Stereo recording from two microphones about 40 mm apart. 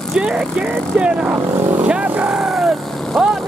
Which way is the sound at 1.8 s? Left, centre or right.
Right.